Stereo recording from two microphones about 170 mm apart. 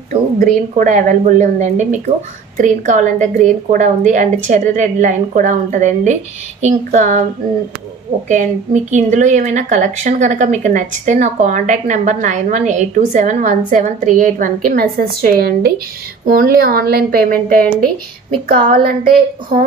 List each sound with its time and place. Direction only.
0.4 s speech: 50° right (ahead or behind)
8.3 s a woman's voice: 45° right (ahead or behind)